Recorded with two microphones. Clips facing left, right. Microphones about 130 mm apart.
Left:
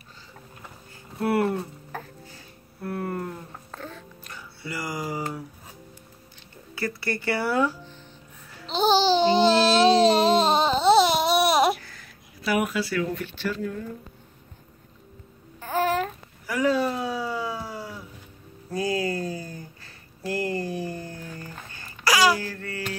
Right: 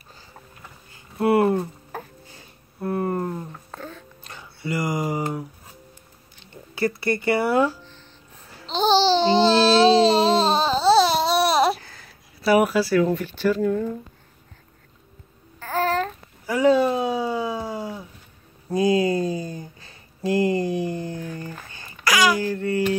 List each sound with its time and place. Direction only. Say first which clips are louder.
1.2 s music: right 5 dB; 20° right (ahead or behind)
3.7 s music: right 1 dB; centre (ahead or behind)
4.2 s a sound: right 4 dB; 25° right (ahead or behind)
6.7 s speech: right 6 dB; 25° right (ahead or behind)
8.6 s babbling: right 2 dB; 10° left (ahead or behind)
9.9 s baby cry: right 1 dB; 15° left (ahead or behind)
11.8 s speech: right 1 dB; 30° right (ahead or behind)
15.6 s babbling: right 1 dB; 10° left (ahead or behind)
16.4 s a sound: right 5 dB; 25° right (ahead or behind)
22.0 s babbling: right 1 dB; 30° left (ahead or behind)
22.4 s baby cry: right 11 dB; 20° right (ahead or behind)